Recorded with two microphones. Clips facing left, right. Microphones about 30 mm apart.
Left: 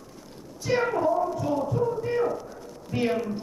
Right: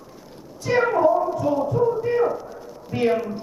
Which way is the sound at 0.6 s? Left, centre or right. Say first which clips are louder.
Right 6 dB; centre.